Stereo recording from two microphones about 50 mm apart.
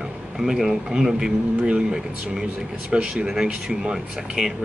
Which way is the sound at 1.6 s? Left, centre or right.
Right.